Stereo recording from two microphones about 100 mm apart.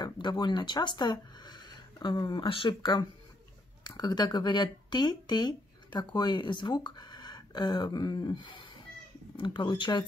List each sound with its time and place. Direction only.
0.0 s speech: 45° left (ahead or behind)
3.8 s speech: 40° left (ahead or behind)